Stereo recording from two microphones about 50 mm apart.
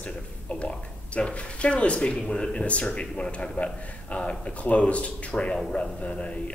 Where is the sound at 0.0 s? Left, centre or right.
Left.